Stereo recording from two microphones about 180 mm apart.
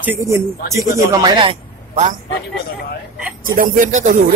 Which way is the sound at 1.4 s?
30° right (ahead or behind).